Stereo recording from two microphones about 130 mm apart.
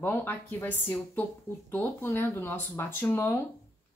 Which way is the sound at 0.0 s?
15° left (ahead or behind).